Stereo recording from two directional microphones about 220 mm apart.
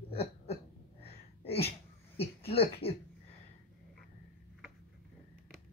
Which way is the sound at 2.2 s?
25° left (ahead or behind).